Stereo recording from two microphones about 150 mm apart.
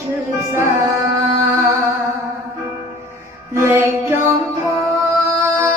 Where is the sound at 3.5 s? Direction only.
15° right (ahead or behind).